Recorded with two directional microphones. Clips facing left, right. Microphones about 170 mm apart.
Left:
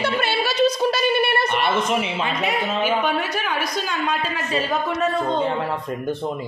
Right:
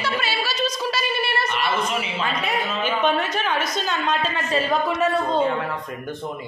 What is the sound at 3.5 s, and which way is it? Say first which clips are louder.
Speech: even; 25° right (ahead or behind).